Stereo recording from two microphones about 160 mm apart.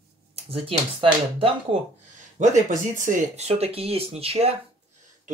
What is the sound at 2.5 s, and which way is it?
Speech, 50° right (ahead or behind).